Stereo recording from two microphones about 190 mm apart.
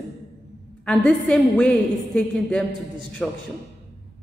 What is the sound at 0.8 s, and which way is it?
A woman's voice, 5° left (ahead or behind).